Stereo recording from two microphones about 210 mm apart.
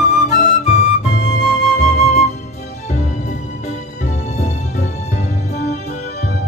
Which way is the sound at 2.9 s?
35° left (ahead or behind).